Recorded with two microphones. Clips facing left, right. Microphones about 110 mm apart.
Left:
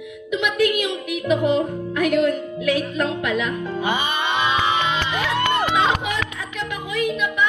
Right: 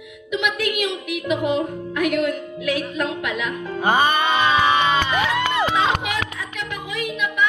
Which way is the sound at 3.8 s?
45° right (ahead or behind).